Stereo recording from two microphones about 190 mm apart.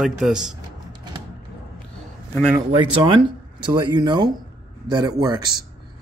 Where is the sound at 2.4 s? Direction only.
10° right (ahead or behind).